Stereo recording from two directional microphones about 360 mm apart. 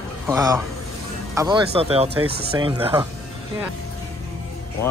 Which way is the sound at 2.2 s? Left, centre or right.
Right.